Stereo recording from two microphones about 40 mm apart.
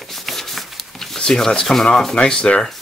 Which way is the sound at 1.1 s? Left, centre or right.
Centre.